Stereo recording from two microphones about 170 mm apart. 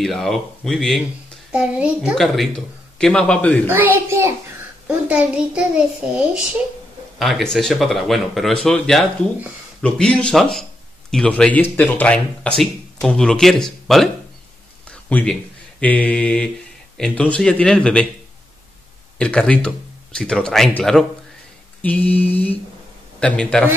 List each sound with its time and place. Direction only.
0.0 s speech: centre (ahead or behind)
3.6 s a child's voice: 10° right (ahead or behind)
14.9 s a sound: 10° left (ahead or behind)
15.8 s speech: 10° left (ahead or behind)
19.1 s speech: 5° left (ahead or behind)